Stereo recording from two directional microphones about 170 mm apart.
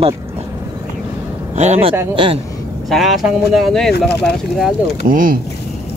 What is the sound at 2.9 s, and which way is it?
Speech, centre (ahead or behind).